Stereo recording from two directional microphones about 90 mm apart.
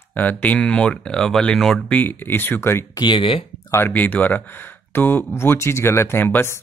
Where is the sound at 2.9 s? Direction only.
60° left (ahead or behind); by 3.4 s 80° left.